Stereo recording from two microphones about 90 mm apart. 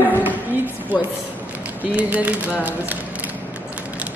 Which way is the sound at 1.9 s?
15° right (ahead or behind).